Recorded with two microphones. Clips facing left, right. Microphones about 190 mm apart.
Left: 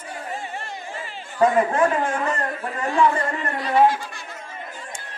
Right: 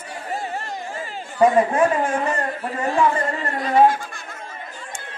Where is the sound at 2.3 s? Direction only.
30° right (ahead or behind).